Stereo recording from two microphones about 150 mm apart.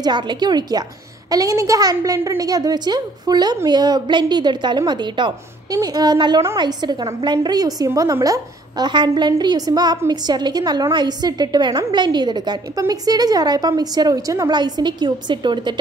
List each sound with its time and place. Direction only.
0.0 s a woman's voice: 30° right (ahead or behind)